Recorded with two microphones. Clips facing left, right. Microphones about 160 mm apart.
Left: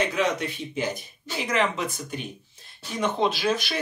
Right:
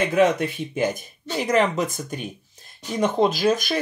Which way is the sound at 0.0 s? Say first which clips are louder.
Right 6 dB; 50° right (ahead or behind).